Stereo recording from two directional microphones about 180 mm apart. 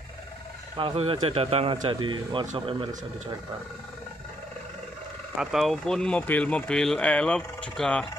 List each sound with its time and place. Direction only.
0.7 s speech: 30° right (ahead or behind)
5.4 s speech: centre (ahead or behind)